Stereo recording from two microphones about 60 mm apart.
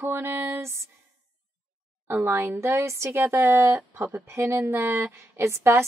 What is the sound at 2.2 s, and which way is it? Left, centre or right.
Speech, right.